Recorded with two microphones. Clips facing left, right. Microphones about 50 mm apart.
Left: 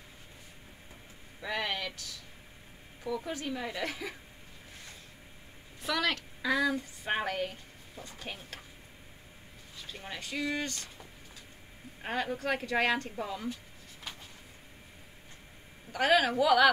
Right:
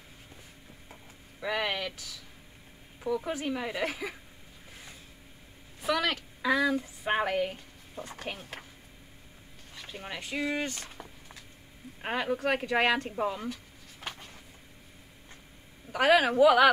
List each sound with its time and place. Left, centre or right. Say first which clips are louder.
1.4 s a sound: right 3 dB; right
3.3 s a woman's voice: right 3 dB; right
5.8 s speech: right 2 dB; centre
6.8 s a sound: right 4 dB; centre
8.1 s speech: right 4 dB; right
9.8 s speech: right 3 dB; right
12.0 s speech: right 3 dB; right
14.0 s a sound: right 4 dB; right
15.9 s speech: right 3 dB; right